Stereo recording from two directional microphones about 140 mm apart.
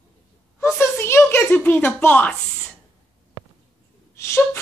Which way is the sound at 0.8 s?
20° left (ahead or behind).